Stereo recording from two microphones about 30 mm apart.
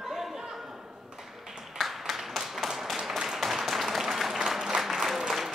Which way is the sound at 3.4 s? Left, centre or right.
Centre.